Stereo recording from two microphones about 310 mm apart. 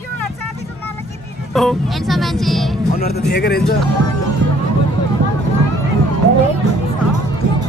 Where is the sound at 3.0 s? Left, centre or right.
Left.